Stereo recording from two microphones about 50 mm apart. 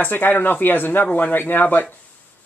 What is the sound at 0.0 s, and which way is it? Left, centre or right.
Speech, left.